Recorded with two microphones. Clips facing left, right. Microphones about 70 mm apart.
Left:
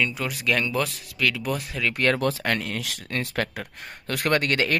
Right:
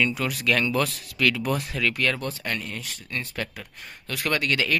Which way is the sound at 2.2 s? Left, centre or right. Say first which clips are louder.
Left 6 dB; left.